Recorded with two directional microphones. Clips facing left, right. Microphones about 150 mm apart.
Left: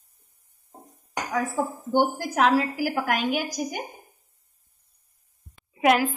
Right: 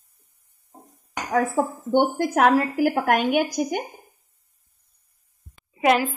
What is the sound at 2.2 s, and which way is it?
A woman's voice, 55° right (ahead or behind).